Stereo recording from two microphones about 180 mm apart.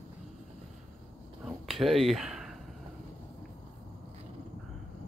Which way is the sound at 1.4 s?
Centre (ahead or behind).